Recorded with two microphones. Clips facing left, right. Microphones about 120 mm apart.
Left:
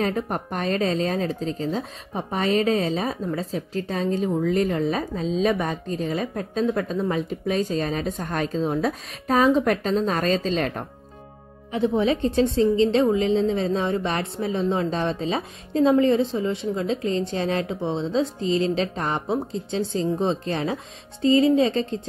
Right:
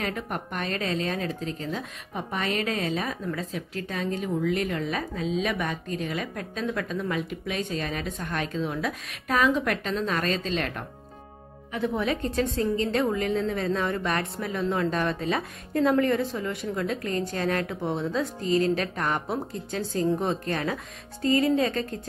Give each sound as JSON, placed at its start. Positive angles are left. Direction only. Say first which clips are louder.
{"t": 0.0, "sound": "a woman's voice", "louder": "left 6 dB", "side_deg": 35}